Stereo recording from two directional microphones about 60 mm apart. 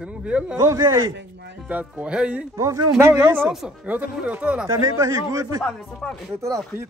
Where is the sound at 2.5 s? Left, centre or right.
Right.